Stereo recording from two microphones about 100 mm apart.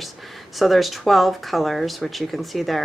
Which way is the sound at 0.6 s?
Centre (ahead or behind).